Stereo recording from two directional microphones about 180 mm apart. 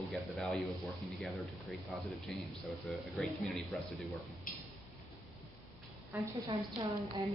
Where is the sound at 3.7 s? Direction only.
Centre (ahead or behind).